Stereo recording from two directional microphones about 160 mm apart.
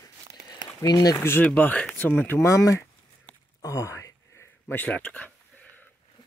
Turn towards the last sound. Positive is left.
turn(degrees=10)  # may be behind; listen again after turning